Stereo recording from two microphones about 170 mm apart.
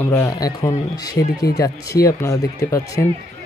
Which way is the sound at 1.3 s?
75° left (ahead or behind).